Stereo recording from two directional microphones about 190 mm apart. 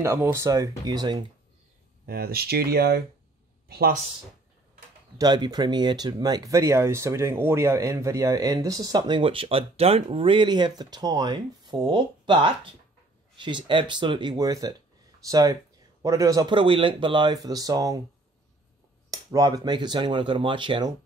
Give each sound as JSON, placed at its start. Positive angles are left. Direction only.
{"t": 0.0, "sound": "speech", "side_deg": -15}
{"t": 2.0, "sound": "speech", "side_deg": -55}
{"t": 5.1, "sound": "speech", "side_deg": -20}
{"t": 19.0, "sound": "speech", "side_deg": -20}